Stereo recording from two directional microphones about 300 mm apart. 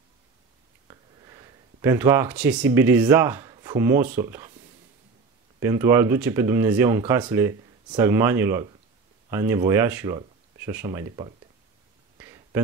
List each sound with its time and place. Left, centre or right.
0.8 s speech: centre
5.6 s speech: centre
12.2 s a sound: centre